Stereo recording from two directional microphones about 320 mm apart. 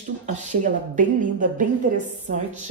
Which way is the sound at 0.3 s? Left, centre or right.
Right.